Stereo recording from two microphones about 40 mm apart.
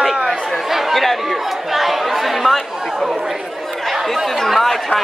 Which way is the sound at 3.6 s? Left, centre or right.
Centre.